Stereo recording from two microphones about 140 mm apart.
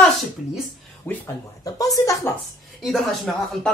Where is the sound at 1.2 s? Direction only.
25° left (ahead or behind).